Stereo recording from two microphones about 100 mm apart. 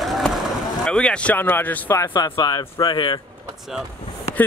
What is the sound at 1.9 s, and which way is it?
Speech, 30° left (ahead or behind).